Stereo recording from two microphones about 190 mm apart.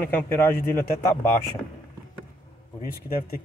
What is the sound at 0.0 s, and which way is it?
Speech, 10° left (ahead or behind).